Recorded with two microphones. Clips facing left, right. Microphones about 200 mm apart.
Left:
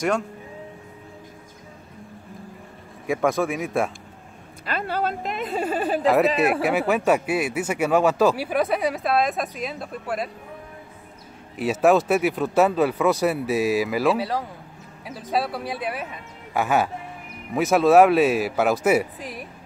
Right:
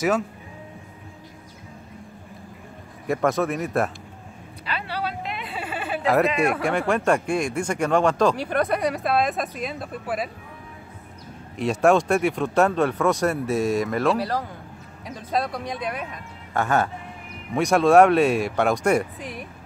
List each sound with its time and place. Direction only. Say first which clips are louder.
3.1 s speech: even; centre (ahead or behind)
4.6 s a sound: left 4 dB; 45° left (ahead or behind)
6.0 s speech: left 1 dB; centre (ahead or behind)
11.5 s speech: even; 5° left (ahead or behind)